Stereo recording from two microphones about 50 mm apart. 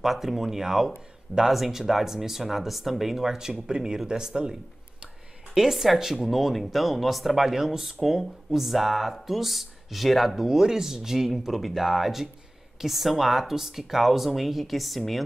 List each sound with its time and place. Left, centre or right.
0.0 s speech: centre